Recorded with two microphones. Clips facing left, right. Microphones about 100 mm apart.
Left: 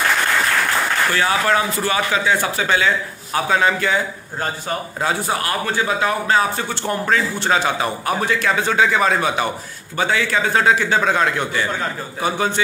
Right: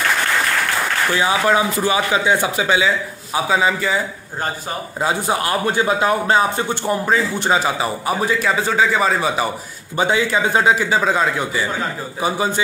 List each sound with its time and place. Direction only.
1.1 s a man's voice: 15° right (ahead or behind)
5.3 s a man's voice: 20° right (ahead or behind); by 9.5 s centre (ahead or behind)
9.9 s speech: 15° right (ahead or behind)
10.7 s a man's voice: 5° right (ahead or behind)